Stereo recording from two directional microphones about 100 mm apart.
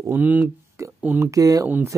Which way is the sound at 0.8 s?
30° right (ahead or behind).